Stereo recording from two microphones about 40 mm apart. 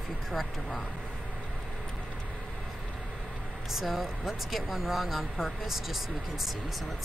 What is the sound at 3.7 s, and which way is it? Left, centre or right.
Speech, centre.